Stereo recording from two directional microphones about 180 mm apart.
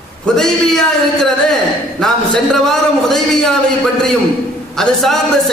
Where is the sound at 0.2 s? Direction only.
5° left (ahead or behind).